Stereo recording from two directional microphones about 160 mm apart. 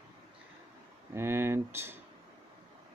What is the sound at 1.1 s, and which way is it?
Speech, 15° right (ahead or behind).